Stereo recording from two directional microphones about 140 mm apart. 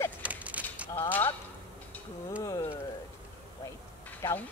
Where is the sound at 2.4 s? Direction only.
20° left (ahead or behind).